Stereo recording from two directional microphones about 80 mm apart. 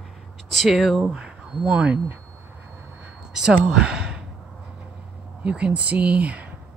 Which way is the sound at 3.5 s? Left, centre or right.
Centre.